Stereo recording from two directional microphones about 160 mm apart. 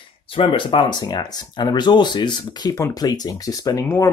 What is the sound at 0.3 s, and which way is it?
Speech, 35° left (ahead or behind).